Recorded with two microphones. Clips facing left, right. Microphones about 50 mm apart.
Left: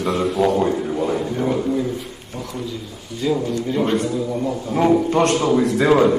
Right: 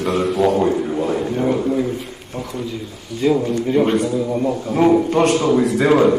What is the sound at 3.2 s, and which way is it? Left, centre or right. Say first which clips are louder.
A man's voice: right 4 dB; right.